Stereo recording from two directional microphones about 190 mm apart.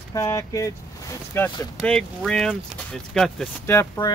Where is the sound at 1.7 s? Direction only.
5° left (ahead or behind).